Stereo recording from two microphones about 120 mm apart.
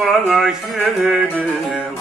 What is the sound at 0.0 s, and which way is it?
Mantra, 5° right (ahead or behind).